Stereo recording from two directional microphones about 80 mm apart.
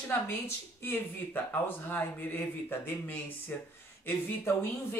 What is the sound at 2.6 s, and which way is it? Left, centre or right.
Speech, left.